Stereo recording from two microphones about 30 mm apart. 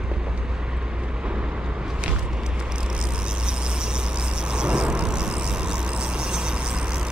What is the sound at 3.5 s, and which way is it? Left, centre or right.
Vehicle, right.